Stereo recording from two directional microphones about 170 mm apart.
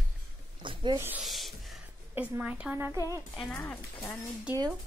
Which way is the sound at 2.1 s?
10° right (ahead or behind).